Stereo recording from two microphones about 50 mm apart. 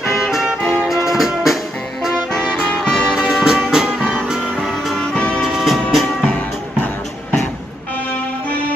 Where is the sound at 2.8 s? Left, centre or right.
Centre.